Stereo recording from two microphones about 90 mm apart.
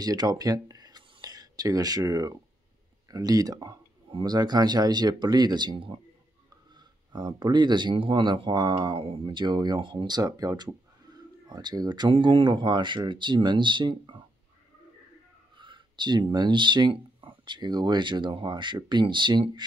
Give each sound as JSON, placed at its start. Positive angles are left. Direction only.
{"t": 0.0, "sound": "speech", "side_deg": -50}
{"t": 9.8, "sound": "speech", "side_deg": -65}
{"t": 12.1, "sound": "speech", "side_deg": -70}
{"t": 15.5, "sound": "speech", "side_deg": -65}